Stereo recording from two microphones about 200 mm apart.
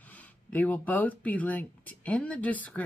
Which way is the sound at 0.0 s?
10° left (ahead or behind).